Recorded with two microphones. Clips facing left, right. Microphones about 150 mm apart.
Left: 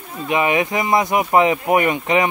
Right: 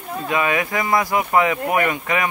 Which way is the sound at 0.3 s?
20° left (ahead or behind).